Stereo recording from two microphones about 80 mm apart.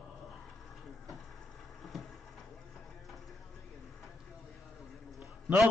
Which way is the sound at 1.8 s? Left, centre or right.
Centre.